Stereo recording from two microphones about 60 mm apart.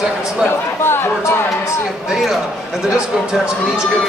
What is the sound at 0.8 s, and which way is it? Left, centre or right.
Speech, left.